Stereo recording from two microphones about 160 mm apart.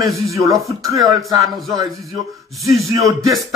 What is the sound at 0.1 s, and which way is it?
Speech, 20° right (ahead or behind).